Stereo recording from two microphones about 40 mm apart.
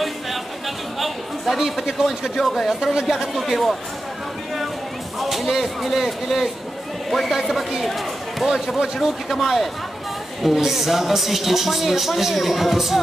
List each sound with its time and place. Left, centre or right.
0.9 s chatter: centre
1.8 s a man's voice: centre
5.2 s a man's voice: centre